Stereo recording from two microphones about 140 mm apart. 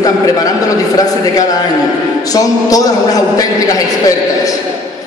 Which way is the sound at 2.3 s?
25° left (ahead or behind).